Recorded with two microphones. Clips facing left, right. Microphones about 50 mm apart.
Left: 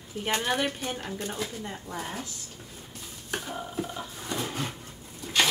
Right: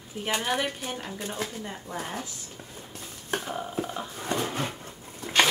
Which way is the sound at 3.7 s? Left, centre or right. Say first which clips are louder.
Right 2 dB; right.